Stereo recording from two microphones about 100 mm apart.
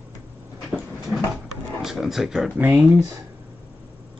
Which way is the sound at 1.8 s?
5° right (ahead or behind).